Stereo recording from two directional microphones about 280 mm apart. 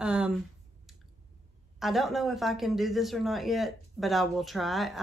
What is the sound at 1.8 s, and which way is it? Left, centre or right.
Speech, centre.